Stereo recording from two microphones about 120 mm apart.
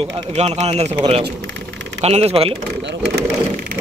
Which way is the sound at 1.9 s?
60° right (ahead or behind).